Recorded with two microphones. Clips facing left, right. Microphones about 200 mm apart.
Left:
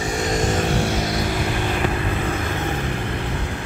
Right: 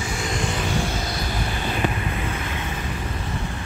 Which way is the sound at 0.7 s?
65° left (ahead or behind).